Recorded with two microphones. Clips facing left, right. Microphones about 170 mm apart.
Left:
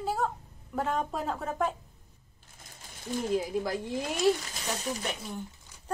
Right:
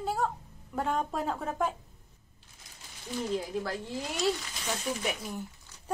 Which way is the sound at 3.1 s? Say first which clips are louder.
Left 2 dB; 45° left (ahead or behind).